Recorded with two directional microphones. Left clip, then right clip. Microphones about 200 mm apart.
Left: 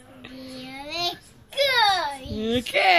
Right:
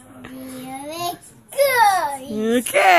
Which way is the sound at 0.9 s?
20° right (ahead or behind).